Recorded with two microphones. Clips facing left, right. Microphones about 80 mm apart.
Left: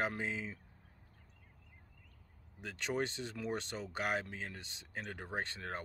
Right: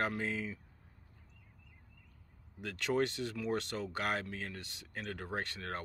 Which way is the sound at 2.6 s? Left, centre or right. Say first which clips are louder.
Right 4 dB; left.